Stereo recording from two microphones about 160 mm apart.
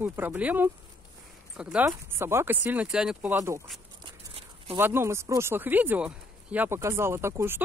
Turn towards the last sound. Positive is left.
turn(degrees=-15)  # may be behind; listen again after turning